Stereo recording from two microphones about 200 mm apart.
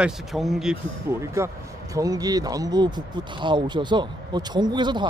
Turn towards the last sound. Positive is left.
turn(degrees=-20)  # may be behind; listen again after turning